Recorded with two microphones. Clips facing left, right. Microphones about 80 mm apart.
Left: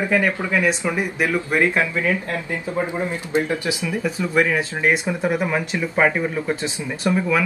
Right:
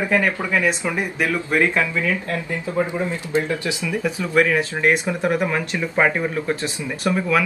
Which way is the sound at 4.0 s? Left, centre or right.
Centre.